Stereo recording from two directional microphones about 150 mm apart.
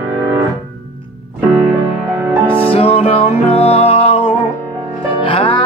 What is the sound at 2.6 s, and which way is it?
Music, 40° left (ahead or behind).